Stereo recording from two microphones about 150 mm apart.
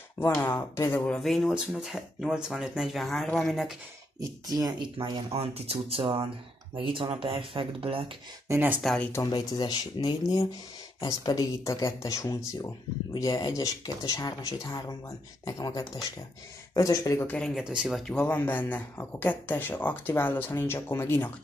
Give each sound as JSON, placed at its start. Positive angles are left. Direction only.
{"t": 0.2, "sound": "speech", "side_deg": 15}
{"t": 1.0, "sound": "speech", "side_deg": 0}
{"t": 4.2, "sound": "speech", "side_deg": -25}
{"t": 8.5, "sound": "speech", "side_deg": -15}
{"t": 8.8, "sound": "speech", "side_deg": 5}
{"t": 9.1, "sound": "speech", "side_deg": 25}
{"t": 17.4, "sound": "speech", "side_deg": -5}